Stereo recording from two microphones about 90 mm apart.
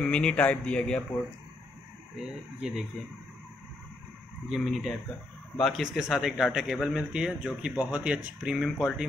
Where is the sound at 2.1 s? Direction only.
5° right (ahead or behind).